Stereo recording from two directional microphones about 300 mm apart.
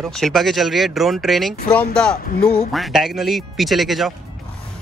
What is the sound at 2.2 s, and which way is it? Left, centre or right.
Speech, left.